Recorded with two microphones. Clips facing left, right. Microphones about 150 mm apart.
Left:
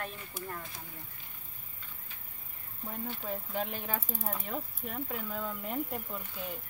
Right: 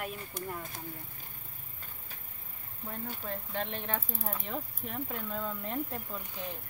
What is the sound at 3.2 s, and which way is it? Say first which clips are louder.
Speech: left 2 dB; 5° left (ahead or behind).